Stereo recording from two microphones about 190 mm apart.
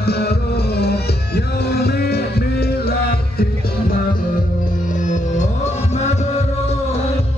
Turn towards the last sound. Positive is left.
turn(degrees=35)  # may be behind; listen again after turning